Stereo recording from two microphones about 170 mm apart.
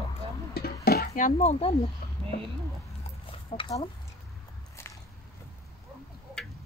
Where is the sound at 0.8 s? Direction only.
60° left (ahead or behind); by 1.7 s 35° left (ahead or behind).